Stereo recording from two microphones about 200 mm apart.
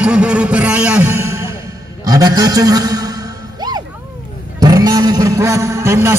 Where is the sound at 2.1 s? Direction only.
20° right (ahead or behind).